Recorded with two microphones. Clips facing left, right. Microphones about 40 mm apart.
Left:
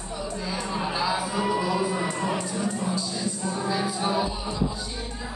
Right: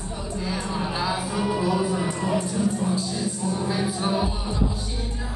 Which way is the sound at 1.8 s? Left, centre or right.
Left.